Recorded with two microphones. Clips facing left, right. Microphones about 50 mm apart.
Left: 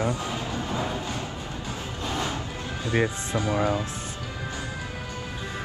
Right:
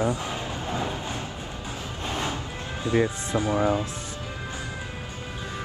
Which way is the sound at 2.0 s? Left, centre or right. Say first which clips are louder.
Even; right.